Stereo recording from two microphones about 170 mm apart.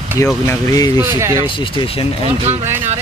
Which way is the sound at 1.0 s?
15° right (ahead or behind).